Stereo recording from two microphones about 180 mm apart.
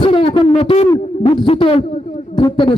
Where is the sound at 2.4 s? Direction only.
25° left (ahead or behind).